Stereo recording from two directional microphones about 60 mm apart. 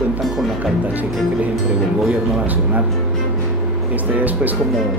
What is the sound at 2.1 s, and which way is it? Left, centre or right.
Speech, right.